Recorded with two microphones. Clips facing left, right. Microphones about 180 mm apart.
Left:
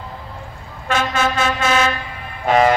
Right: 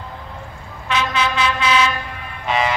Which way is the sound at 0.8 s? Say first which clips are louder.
Left 2 dB; 45° left (ahead or behind).